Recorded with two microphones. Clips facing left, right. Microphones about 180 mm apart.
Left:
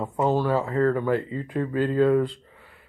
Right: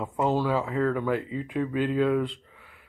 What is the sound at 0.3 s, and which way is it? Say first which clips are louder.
Speech: left 3 dB; 5° right (ahead or behind).